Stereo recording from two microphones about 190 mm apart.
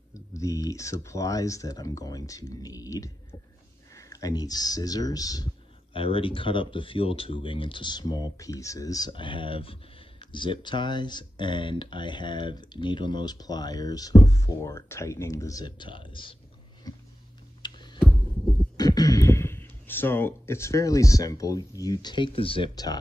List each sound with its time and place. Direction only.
0.1 s speech: 15° left (ahead or behind)
16.9 s a sound: 20° left (ahead or behind)
18.8 s speech: 20° left (ahead or behind)